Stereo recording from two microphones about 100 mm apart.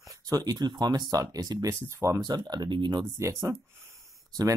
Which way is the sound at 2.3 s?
45° right (ahead or behind).